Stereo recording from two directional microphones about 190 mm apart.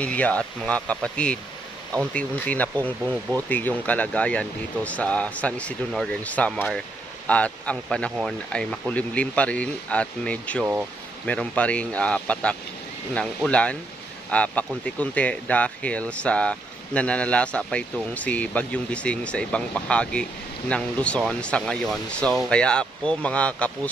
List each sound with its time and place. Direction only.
0.0 s speech: 5° left (ahead or behind)